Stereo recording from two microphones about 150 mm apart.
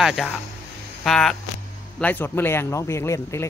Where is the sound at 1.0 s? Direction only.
Centre (ahead or behind).